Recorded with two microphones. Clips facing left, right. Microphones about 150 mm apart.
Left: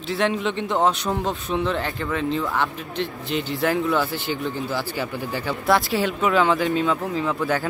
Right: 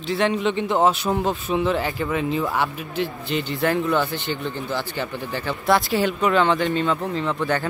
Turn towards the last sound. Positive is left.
turn(degrees=5)  # may be behind; listen again after turning